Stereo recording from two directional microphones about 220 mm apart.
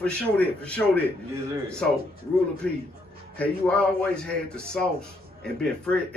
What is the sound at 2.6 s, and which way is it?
A man's voice, 5° left (ahead or behind).